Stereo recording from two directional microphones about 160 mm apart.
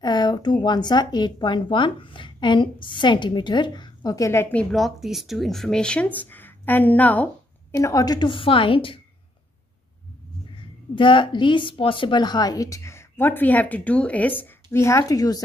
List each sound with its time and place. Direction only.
0.0 s speech: 25° left (ahead or behind); by 7.2 s 10° left (ahead or behind)
7.7 s a woman's voice: 20° left (ahead or behind)
11.0 s a woman's voice: 30° left (ahead or behind)